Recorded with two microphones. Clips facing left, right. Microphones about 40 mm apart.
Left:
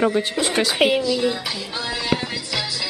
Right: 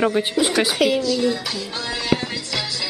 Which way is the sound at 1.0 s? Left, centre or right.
Centre.